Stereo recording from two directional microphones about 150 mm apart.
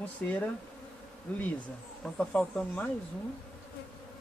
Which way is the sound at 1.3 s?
10° left (ahead or behind).